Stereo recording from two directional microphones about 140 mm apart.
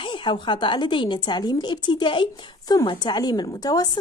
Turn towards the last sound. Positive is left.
turn(degrees=25)  # may be behind; listen again after turning